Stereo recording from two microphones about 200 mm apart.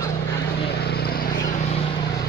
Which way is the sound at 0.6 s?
55° left (ahead or behind).